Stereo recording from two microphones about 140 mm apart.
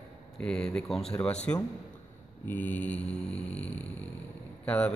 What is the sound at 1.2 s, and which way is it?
Mantra, 10° left (ahead or behind).